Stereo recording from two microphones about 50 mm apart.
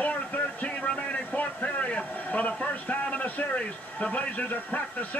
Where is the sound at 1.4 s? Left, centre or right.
Left.